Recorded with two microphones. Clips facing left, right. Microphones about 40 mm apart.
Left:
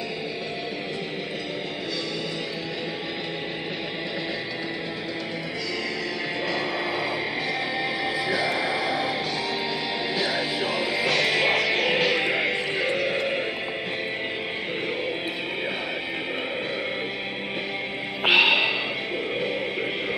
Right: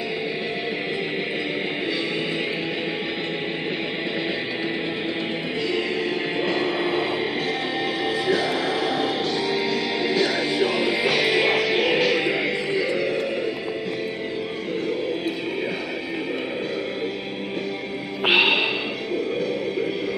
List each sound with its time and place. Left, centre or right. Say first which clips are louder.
6.4 s a sound: right 4 dB; right
8.3 s music: right 3 dB; centre
12.7 s music: right 2 dB; left
18.2 s music: even; centre